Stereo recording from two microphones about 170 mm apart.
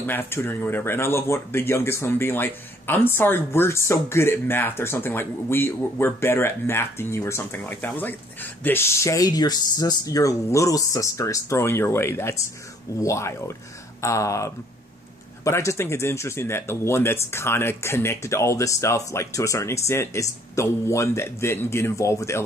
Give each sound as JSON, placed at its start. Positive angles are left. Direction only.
{"t": 0.0, "sound": "speech", "side_deg": 10}